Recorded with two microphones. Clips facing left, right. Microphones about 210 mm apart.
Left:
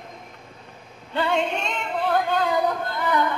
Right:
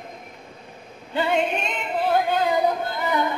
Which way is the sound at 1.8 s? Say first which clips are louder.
Right 2 dB; 15° right (ahead or behind).